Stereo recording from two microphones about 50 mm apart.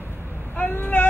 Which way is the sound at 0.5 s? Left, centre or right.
Left.